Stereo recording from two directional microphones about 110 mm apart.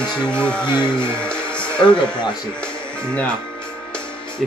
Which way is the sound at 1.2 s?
10° left (ahead or behind).